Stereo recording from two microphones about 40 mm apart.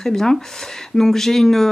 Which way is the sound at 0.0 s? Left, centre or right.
Centre.